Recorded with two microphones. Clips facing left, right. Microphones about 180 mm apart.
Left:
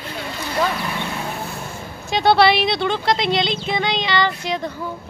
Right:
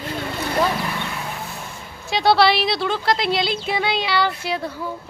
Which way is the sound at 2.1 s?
Centre (ahead or behind).